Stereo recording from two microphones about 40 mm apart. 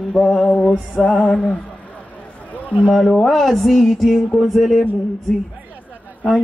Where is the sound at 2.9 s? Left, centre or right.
Centre.